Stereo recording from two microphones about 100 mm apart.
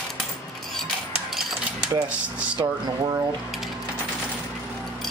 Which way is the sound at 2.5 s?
45° right (ahead or behind).